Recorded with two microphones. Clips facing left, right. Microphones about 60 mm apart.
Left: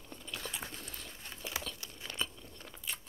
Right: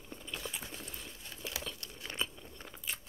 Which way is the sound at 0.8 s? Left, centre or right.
Centre.